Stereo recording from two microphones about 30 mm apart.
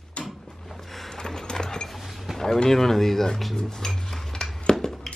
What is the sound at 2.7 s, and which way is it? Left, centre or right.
Speech, centre.